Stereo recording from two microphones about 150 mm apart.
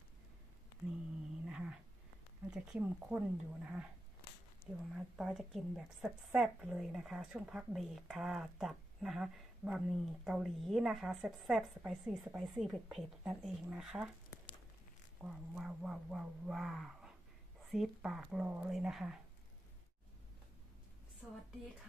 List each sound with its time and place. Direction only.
1.5 s cat: 5° right (ahead or behind)
2.5 s speech: 5° right (ahead or behind)
4.9 s speech: 5° right (ahead or behind)
15.2 s speech: 5° right (ahead or behind)
21.2 s a woman's voice: 5° right (ahead or behind)